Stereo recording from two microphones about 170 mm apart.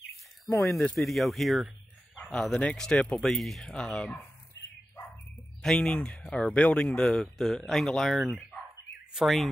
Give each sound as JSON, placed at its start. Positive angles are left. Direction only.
{"t": 0.5, "sound": "speech", "side_deg": 20}
{"t": 0.7, "sound": "speech", "side_deg": 0}
{"t": 5.6, "sound": "speech", "side_deg": 5}